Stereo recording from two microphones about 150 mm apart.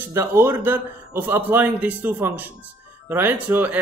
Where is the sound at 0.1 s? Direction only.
15° right (ahead or behind).